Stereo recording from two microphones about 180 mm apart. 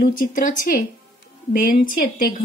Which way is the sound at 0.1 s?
50° left (ahead or behind).